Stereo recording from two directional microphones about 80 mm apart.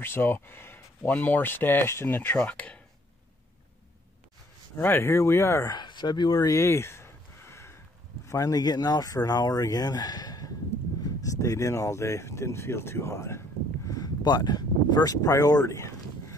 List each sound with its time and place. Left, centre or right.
0.0 s speech: left
4.7 s speech: left
5.7 s speech: left
6.4 s a sound: left
8.3 s speech: left
11.1 s speech: left
14.2 s speech: left